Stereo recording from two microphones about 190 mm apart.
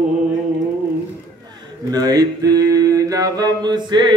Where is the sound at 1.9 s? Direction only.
20° right (ahead or behind).